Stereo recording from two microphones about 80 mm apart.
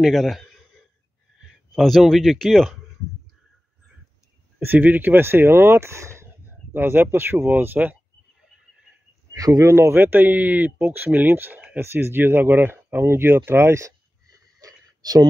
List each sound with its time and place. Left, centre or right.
0.0 s speech: centre
1.8 s speech: centre
4.6 s speech: right
9.3 s speech: right
14.6 s a sound: right